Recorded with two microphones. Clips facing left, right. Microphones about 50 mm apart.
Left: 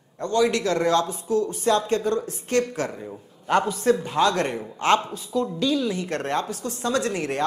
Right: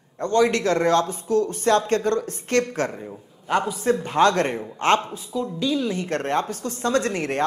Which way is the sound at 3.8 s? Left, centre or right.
Right.